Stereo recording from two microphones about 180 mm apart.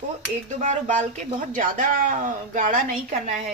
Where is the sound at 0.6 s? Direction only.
45° right (ahead or behind).